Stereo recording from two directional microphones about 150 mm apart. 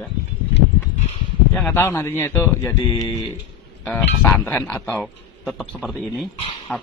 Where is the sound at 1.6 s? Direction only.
10° left (ahead or behind).